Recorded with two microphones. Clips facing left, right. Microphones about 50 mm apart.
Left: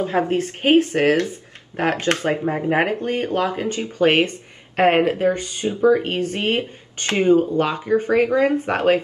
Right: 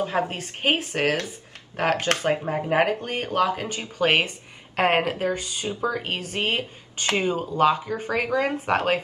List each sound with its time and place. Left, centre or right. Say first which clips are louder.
0.0 s speech: left 6 dB; left
4.2 s a sound: left 6 dB; left
4.8 s speech: left 6 dB; left